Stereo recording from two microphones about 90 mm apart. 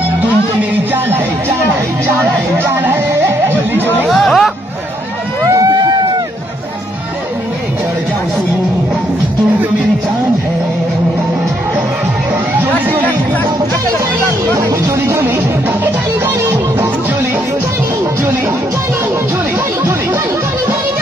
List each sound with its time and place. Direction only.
2.6 s music: 25° right (ahead or behind)
4.1 s hubbub: centre (ahead or behind)
5.4 s a sound: 40° right (ahead or behind)
12.8 s music: 20° right (ahead or behind)
14.2 s music: 35° right (ahead or behind)